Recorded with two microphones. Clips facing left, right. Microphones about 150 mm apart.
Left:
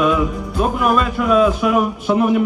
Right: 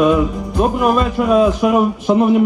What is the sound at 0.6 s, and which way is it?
Speech, 35° right (ahead or behind).